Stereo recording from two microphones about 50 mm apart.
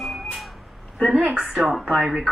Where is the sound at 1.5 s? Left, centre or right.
Centre.